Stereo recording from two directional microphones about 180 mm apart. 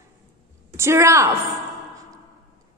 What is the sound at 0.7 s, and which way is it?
Speech, 15° right (ahead or behind).